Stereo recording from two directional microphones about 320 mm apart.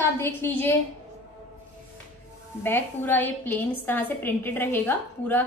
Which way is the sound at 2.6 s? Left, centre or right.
Centre.